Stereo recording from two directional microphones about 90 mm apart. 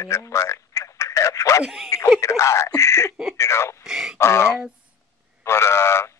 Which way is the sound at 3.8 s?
5° right (ahead or behind).